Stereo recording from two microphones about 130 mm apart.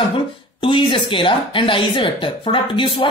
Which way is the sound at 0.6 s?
40° left (ahead or behind).